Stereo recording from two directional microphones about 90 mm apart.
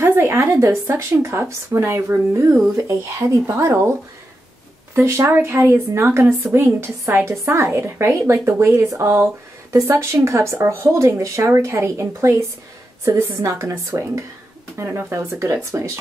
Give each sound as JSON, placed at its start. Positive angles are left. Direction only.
{"t": 0.0, "sound": "speech", "side_deg": -30}
{"t": 4.9, "sound": "a woman's voice", "side_deg": -30}